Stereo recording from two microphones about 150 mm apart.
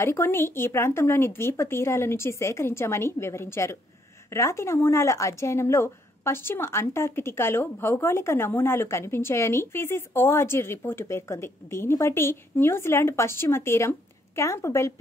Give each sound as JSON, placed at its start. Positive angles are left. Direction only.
{"t": 0.0, "sound": "speech", "side_deg": 15}